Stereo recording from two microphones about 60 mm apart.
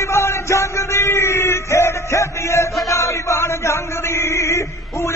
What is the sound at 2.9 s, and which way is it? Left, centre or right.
Chant, left.